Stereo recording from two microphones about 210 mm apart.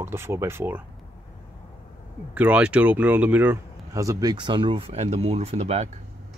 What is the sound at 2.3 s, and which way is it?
Speech, 5° right (ahead or behind).